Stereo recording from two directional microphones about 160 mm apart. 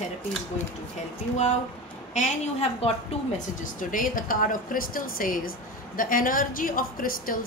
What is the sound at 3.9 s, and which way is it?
A woman's voice, 60° left (ahead or behind).